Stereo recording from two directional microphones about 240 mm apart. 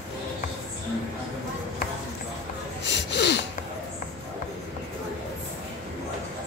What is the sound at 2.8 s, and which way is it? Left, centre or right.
Snort, left.